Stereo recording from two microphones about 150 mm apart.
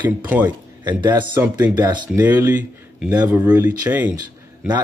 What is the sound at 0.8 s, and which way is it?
Speech, 30° right (ahead or behind).